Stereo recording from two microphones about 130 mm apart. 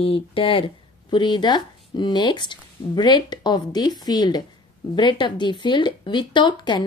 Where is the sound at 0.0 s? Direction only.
45° left (ahead or behind).